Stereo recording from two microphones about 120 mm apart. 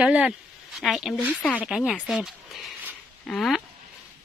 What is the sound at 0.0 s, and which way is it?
A woman's voice, 10° right (ahead or behind).